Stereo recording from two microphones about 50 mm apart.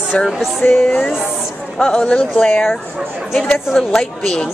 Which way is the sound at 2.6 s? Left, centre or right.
Centre.